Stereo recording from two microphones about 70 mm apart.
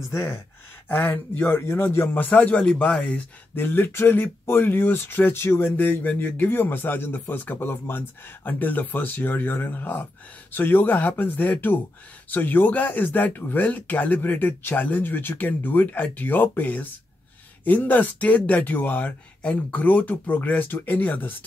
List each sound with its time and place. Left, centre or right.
0.1 s speech: left
1.5 s speech: left; by 3.0 s centre
3.0 s speech: left